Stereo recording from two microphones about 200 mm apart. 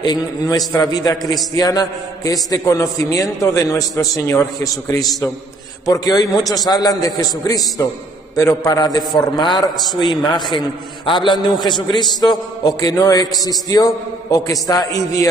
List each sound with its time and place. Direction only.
0.0 s a man's voice: 20° left (ahead or behind)